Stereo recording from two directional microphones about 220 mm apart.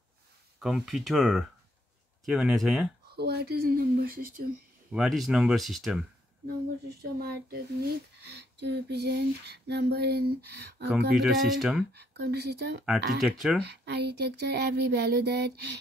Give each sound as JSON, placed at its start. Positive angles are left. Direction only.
{"t": 0.6, "sound": "speech", "side_deg": 0}
{"t": 3.2, "sound": "speech", "side_deg": -45}
{"t": 4.9, "sound": "speech", "side_deg": 0}
{"t": 7.0, "sound": "speech", "side_deg": -45}
{"t": 11.1, "sound": "speech", "side_deg": 0}
{"t": 12.1, "sound": "speech", "side_deg": -50}
{"t": 13.2, "sound": "speech", "side_deg": 0}
{"t": 13.7, "sound": "speech", "side_deg": -50}